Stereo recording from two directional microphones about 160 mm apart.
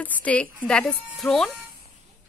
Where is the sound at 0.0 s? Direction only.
10° left (ahead or behind).